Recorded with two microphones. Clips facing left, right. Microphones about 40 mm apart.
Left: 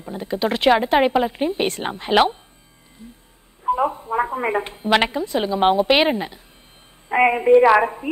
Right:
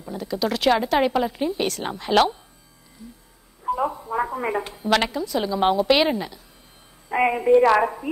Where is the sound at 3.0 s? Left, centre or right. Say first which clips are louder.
Left 1 dB; left.